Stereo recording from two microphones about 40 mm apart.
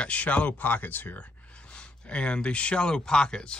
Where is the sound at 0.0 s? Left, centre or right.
Left.